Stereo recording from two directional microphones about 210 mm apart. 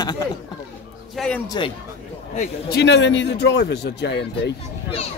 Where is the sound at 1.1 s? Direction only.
5° left (ahead or behind).